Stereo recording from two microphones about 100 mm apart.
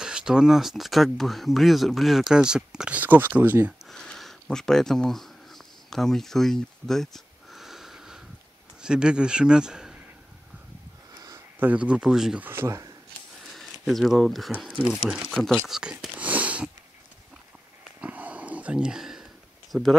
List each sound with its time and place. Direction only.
0.0 s speech: 5° right (ahead or behind)
3.9 s a sound: 5° left (ahead or behind)
7.5 s wheeze: 5° right (ahead or behind)
8.8 s a man's voice: 10° right (ahead or behind)
11.1 s a sound: 35° right (ahead or behind)
11.6 s a man's voice: 15° right (ahead or behind)
12.4 s speech: 25° right (ahead or behind)
13.5 s speech: centre (ahead or behind)
15.8 s sniff: 10° right (ahead or behind)
18.0 s a sound: 15° right (ahead or behind)
19.7 s speech: centre (ahead or behind)